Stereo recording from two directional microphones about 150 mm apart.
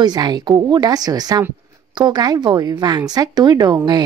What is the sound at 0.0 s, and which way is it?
Speech, 25° right (ahead or behind).